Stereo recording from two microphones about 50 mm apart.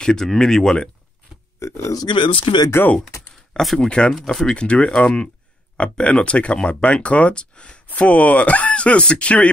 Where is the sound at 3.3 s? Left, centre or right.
Centre.